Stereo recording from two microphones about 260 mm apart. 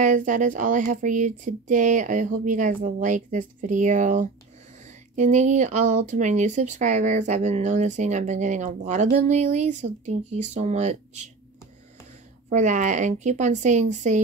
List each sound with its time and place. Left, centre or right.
0.0 s speech: right
12.4 s speech: right